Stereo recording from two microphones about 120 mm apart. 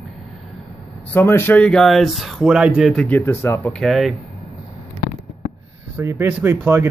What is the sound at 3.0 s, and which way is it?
Speech, 15° left (ahead or behind).